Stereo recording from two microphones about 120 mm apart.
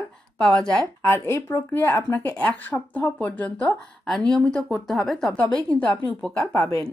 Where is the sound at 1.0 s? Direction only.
20° left (ahead or behind).